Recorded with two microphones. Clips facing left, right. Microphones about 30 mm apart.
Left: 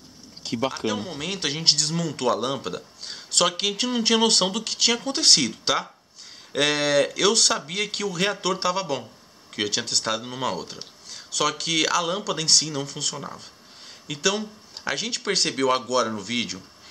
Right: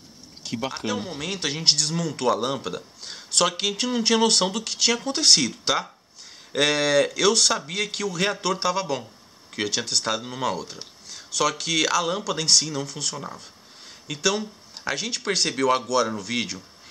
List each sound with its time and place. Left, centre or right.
0.4 s speech: centre
0.8 s speech: centre